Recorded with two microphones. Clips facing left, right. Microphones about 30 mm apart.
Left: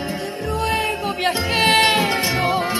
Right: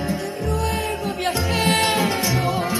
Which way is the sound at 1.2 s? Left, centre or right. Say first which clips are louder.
Left 3 dB; left.